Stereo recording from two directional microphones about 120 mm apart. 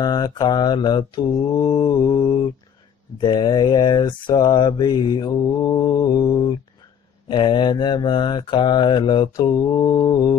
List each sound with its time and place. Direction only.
0.0 s mantra: 35° left (ahead or behind)
7.2 s mantra: 40° left (ahead or behind)